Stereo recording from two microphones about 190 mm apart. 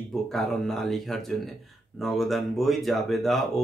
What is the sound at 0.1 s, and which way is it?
Speech, centre (ahead or behind).